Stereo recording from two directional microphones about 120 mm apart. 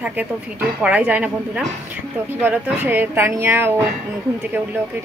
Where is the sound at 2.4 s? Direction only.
15° right (ahead or behind).